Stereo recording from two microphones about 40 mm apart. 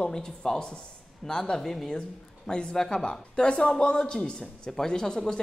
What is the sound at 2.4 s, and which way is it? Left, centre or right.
Speech, left.